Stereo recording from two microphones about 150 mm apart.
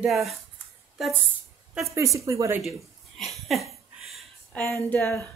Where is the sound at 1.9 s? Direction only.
20° right (ahead or behind).